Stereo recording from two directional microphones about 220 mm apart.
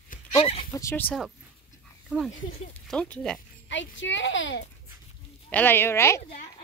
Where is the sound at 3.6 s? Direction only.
55° left (ahead or behind).